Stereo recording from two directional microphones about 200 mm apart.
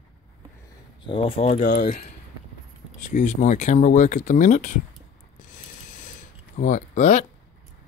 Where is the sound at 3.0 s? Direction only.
40° left (ahead or behind).